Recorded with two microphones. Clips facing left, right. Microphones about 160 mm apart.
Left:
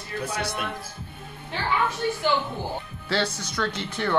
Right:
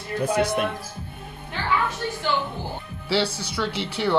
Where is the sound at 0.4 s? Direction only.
50° right (ahead or behind).